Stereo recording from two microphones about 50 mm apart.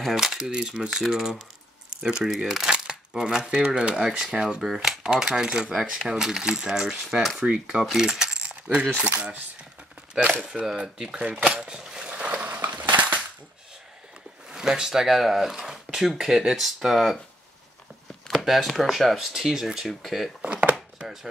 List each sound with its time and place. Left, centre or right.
0.1 s speech: centre
0.5 s speech: centre
7.4 s coin: centre
10.1 s speech: centre
12.0 s crushing: right
14.5 s speech: centre
18.3 s a sound: centre
18.7 s speech: centre
19.9 s speech: centre
20.4 s chopping: right